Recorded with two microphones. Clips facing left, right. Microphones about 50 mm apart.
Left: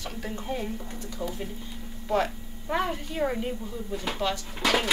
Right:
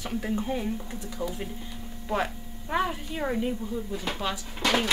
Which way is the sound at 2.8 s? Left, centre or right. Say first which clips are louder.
Right 1 dB; centre.